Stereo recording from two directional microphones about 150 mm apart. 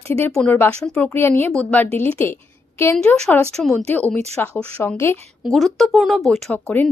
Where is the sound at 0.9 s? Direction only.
15° left (ahead or behind).